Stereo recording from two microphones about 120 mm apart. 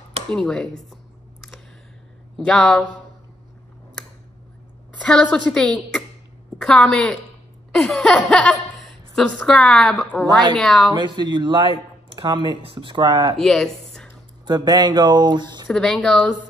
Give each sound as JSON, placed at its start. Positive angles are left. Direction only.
{"t": 0.3, "sound": "a woman's voice", "side_deg": 5}
{"t": 2.3, "sound": "a woman's voice", "side_deg": 5}
{"t": 5.0, "sound": "a woman's voice", "side_deg": 10}
{"t": 10.2, "sound": "speech", "side_deg": -35}
{"t": 10.6, "sound": "a woman's voice", "side_deg": 5}
{"t": 10.9, "sound": "speech", "side_deg": -40}
{"t": 13.4, "sound": "speech", "side_deg": 5}
{"t": 14.4, "sound": "speech", "side_deg": -35}
{"t": 15.7, "sound": "a woman's voice", "side_deg": 5}